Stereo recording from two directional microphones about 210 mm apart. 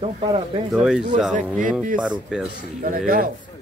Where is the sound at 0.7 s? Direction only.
5° right (ahead or behind).